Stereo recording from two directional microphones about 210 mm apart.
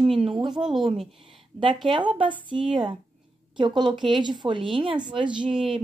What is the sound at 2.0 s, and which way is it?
Speech, 25° right (ahead or behind).